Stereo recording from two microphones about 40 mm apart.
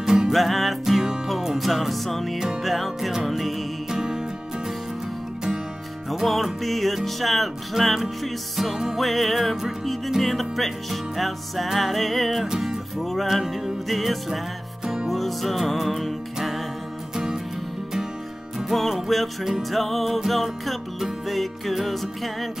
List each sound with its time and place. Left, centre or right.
0.0 s music: centre
0.3 s music: centre
2.3 s music: centre
2.6 s music: centre
3.9 s music: centre
6.0 s music: centre
13.0 s music: centre
17.1 s music: centre
18.6 s music: centre